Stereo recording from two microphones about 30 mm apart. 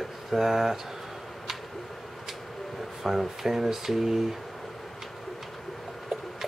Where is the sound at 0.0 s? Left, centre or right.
Centre.